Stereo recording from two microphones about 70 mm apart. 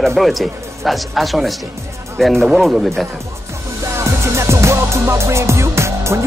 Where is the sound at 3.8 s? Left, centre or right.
Right.